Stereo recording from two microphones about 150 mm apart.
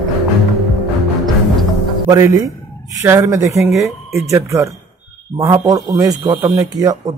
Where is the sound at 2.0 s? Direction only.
25° right (ahead or behind).